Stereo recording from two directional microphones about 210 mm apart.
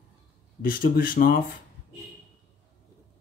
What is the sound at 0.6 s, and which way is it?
Speech, 45° left (ahead or behind).